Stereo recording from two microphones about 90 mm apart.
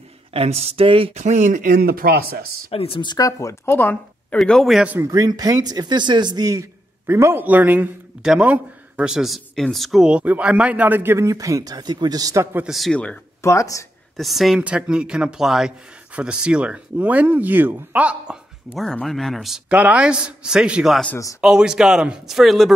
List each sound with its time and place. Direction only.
0.3 s speech: 90° right
2.7 s speech: 85° left
3.1 s speech: 40° left (ahead or behind); by 4.0 s 25° left (ahead or behind)
4.5 s speech: centre (ahead or behind)
4.9 s speech: 40° right (ahead or behind); by 7.9 s 20° right (ahead or behind)
8.2 s speech: 5° right (ahead or behind)
10.0 s speech: 15° right (ahead or behind); by 12.4 s 40° right (ahead or behind)
12.6 s speech: centre (ahead or behind)
12.9 s speech: 10° left (ahead or behind)
13.4 s speech: 35° left (ahead or behind)
14.1 s speech: centre (ahead or behind)
14.6 s speech: 15° right (ahead or behind)
18.8 s speech: 5° left (ahead or behind)
19.7 s speech: 15° right (ahead or behind)